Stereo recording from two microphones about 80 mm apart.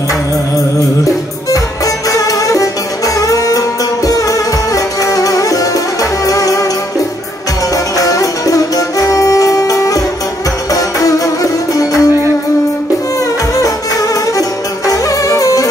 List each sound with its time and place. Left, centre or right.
2.0 s music: left
7.7 s music: left
14.9 s music: left